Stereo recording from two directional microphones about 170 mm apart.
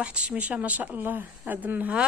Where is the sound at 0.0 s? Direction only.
5° right (ahead or behind).